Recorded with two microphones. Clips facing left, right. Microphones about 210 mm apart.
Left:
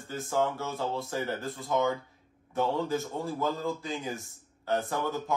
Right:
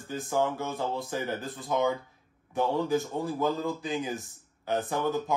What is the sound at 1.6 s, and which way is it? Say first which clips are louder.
Speech: right 1 dB; 15° right (ahead or behind).